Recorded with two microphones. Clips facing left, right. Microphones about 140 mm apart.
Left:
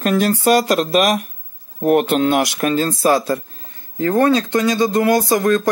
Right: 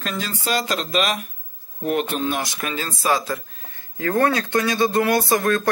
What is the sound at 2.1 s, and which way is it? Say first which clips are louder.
Speech: left 8 dB; 90° left.